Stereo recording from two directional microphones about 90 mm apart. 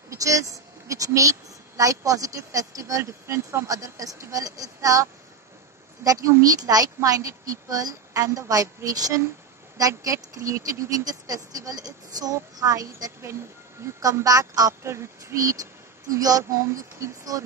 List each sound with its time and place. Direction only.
0.1 s a woman's voice: 35° right (ahead or behind)
6.0 s a woman's voice: 35° right (ahead or behind)
16.5 s a woman's voice: 30° right (ahead or behind)